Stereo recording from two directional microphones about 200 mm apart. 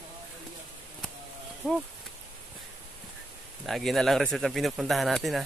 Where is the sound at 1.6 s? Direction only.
5° right (ahead or behind).